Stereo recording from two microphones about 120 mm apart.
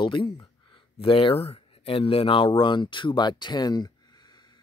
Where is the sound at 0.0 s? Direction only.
40° left (ahead or behind).